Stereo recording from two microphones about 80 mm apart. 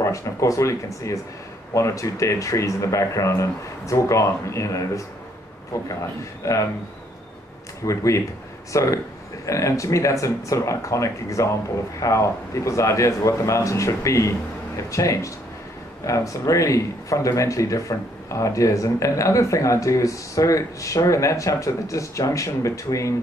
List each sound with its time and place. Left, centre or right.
0.0 s speech: left
6.4 s speech: left
7.8 s speech: left